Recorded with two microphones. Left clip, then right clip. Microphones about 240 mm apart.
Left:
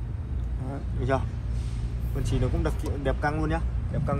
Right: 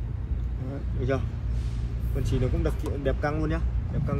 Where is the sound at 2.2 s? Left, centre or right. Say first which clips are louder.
Even; centre.